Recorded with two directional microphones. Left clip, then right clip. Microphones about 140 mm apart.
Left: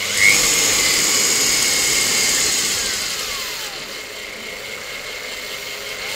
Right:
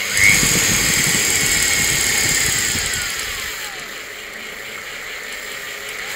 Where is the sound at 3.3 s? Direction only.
20° left (ahead or behind).